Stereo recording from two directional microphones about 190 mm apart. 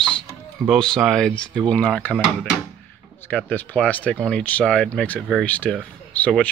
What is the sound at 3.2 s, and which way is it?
Speech, 10° left (ahead or behind).